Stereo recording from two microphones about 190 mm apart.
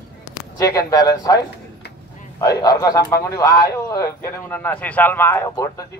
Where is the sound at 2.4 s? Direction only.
20° left (ahead or behind).